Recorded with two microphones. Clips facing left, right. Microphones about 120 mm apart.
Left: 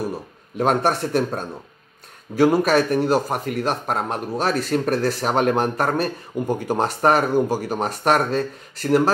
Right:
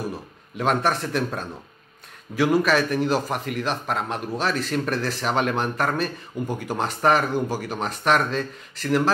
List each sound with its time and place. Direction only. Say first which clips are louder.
0.6 s speech: left 3 dB; 45° left (ahead or behind)